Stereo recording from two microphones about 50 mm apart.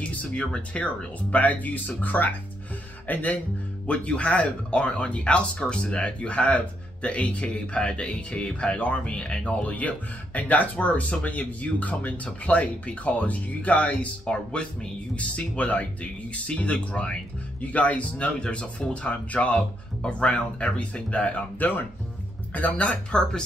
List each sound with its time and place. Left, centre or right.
0.0 s speech: left